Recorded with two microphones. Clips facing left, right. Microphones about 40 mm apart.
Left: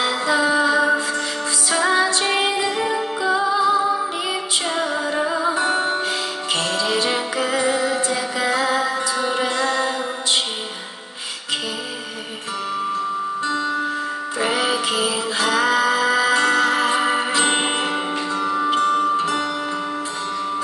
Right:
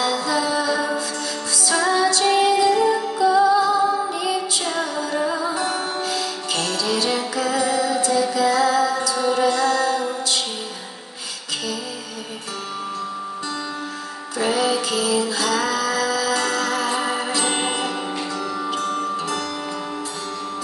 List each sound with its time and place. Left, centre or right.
0.0 s music: left
14.4 s music: left